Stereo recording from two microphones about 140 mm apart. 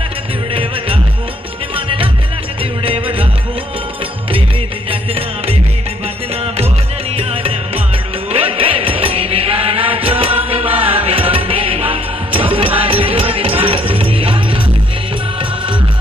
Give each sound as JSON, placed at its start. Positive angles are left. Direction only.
{"t": 2.8, "sound": "music", "side_deg": -40}
{"t": 6.4, "sound": "music", "side_deg": -50}